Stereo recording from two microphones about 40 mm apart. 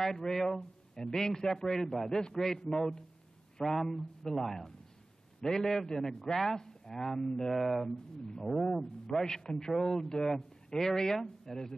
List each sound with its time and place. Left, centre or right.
0.0 s a man's voice: centre
7.5 s speech: centre
7.8 s a man's voice: centre